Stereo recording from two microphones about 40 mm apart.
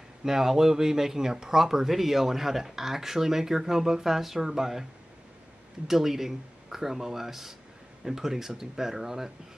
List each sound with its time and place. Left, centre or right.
0.2 s speech: centre
5.9 s speech: centre